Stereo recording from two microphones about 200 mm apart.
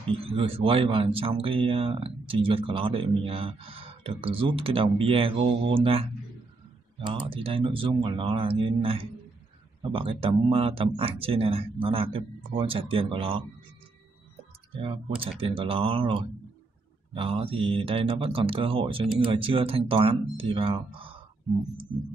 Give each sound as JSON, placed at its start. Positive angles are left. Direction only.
{"t": 0.1, "sound": "speech", "side_deg": -30}
{"t": 7.1, "sound": "speech", "side_deg": -25}
{"t": 14.7, "sound": "speech", "side_deg": -25}